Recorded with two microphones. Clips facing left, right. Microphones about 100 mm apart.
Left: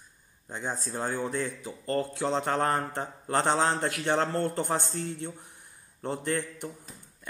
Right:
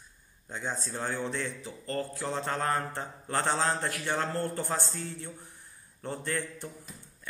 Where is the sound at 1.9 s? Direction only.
20° left (ahead or behind).